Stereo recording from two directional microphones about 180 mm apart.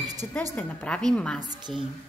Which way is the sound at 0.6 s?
5° left (ahead or behind).